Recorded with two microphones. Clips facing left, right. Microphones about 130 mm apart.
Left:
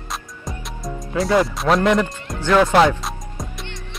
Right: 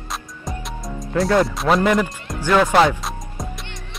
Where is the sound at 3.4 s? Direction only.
Centre (ahead or behind).